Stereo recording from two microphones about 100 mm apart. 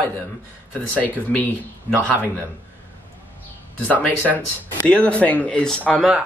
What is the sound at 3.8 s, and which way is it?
Speech, 15° left (ahead or behind).